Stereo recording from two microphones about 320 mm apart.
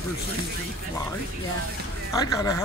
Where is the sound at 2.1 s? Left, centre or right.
Centre.